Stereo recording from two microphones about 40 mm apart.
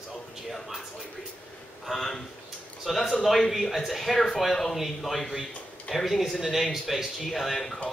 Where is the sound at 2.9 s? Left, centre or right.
Centre.